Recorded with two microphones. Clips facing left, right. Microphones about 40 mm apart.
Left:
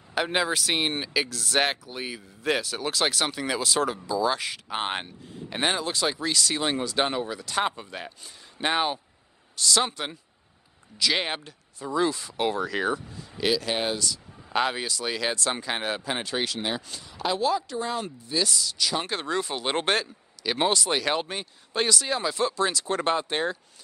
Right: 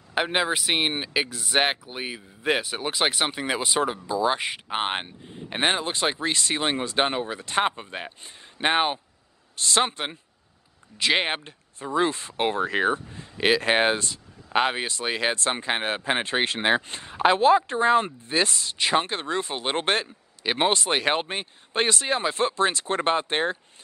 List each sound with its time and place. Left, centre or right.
0.1 s speech: right